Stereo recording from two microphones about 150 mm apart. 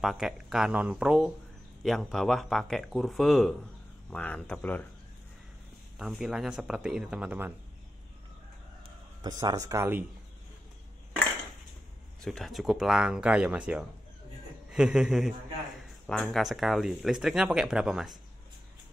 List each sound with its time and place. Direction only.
0.0 s speech: centre (ahead or behind)
5.9 s speech: centre (ahead or behind)
9.4 s speech: 25° right (ahead or behind)
12.2 s speech: centre (ahead or behind)